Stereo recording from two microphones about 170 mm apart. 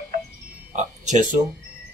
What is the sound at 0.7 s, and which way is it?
Music, 45° right (ahead or behind).